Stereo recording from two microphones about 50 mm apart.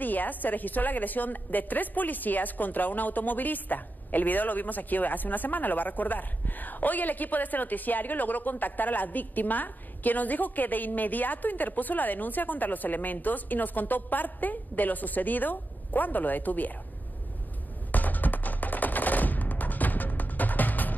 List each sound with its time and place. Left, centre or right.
0.0 s a woman's voice: left
17.9 s music: left